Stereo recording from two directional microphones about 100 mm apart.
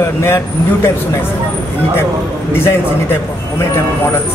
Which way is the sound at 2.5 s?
20° left (ahead or behind).